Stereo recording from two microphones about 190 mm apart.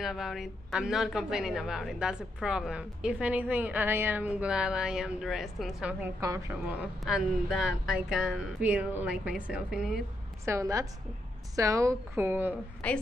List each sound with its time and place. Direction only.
0.0 s a woman's voice: centre (ahead or behind)
10.4 s a woman's voice: 15° right (ahead or behind)
12.8 s a woman's voice: 5° left (ahead or behind)